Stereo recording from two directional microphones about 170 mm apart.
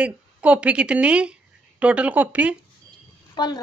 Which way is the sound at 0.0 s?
5° right (ahead or behind).